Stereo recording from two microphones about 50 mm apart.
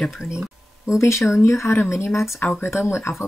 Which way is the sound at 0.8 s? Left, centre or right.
Left.